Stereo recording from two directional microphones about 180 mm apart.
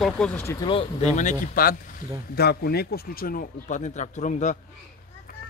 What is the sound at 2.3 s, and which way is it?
Speech, 60° left (ahead or behind).